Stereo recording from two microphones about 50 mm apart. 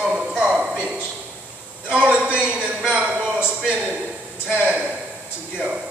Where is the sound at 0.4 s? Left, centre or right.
Right.